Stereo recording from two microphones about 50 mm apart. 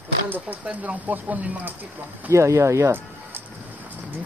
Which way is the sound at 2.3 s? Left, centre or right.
Right.